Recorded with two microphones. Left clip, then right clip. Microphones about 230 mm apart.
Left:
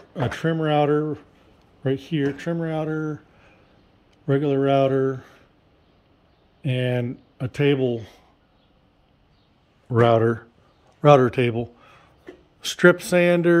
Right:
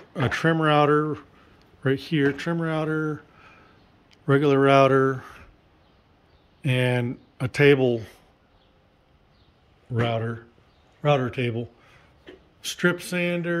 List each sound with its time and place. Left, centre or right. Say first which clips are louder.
0.1 s speech: right 2 dB; centre
6.6 s speech: right 1 dB; centre
9.9 s a man's voice: left 10 dB; left